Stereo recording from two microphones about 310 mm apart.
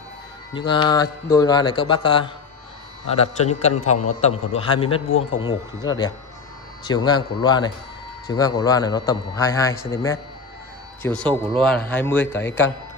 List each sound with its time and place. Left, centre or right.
0.5 s a man's voice: centre